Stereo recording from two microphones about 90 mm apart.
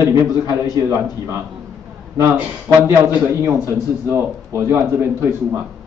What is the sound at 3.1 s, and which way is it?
A man's voice, 25° right (ahead or behind).